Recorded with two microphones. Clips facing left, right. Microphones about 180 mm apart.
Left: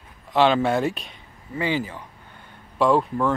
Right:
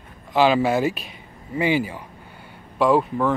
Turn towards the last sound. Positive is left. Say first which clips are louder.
# right 1 dB
turn(degrees=0)  # may be behind; listen again after turning